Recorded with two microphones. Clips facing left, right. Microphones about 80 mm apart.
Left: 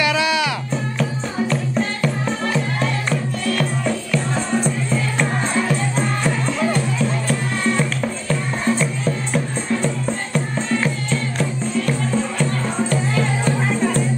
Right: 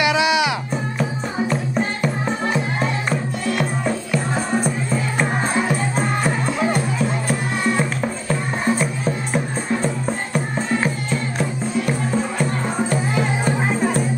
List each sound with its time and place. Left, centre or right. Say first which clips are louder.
0.0 s music: right 1 dB; centre
5.2 s music: right 2 dB; right